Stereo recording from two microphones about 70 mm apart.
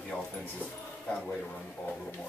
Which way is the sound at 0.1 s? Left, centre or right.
Centre.